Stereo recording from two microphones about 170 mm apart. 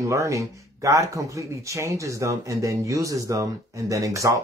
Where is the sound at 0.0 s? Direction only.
20° right (ahead or behind).